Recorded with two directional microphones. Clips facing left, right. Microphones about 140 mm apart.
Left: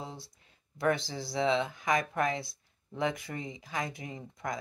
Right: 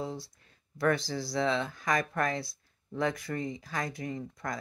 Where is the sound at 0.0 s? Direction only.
20° left (ahead or behind).